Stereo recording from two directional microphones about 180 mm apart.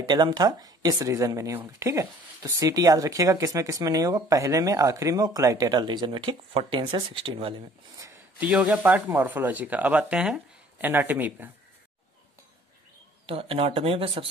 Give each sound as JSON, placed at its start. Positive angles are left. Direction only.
{"t": 0.1, "sound": "speech", "side_deg": -25}
{"t": 8.0, "sound": "speech", "side_deg": -10}
{"t": 13.3, "sound": "speech", "side_deg": -30}